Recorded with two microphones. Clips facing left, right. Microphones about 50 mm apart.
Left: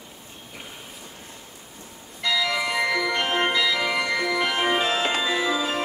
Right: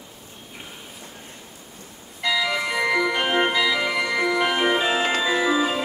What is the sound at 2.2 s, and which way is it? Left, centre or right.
Music, centre.